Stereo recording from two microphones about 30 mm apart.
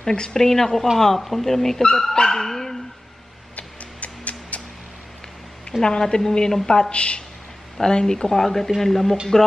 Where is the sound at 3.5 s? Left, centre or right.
Left.